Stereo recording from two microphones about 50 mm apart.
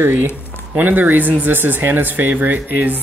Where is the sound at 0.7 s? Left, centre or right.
Right.